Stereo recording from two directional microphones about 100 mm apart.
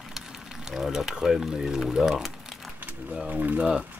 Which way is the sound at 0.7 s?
5° right (ahead or behind).